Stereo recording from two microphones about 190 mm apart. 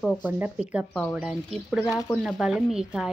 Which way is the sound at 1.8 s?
15° left (ahead or behind).